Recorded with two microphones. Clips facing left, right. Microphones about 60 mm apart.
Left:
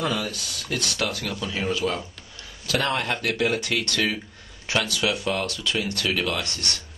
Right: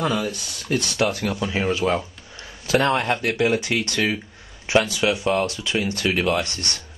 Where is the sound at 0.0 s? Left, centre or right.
Centre.